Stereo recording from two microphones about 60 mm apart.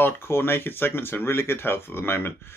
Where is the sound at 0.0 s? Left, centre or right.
Left.